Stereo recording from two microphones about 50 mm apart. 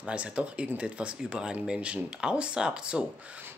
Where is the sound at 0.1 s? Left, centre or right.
Right.